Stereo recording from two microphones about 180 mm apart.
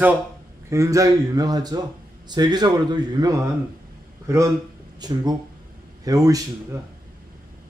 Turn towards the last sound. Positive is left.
turn(degrees=-20)  # may be behind; listen again after turning